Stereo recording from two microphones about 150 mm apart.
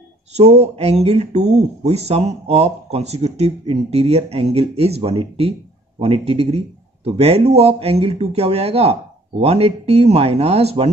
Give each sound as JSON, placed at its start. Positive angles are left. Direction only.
{"t": 0.3, "sound": "speech", "side_deg": -45}